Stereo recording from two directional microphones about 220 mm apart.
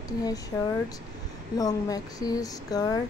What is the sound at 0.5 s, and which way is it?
A woman's voice, 15° left (ahead or behind).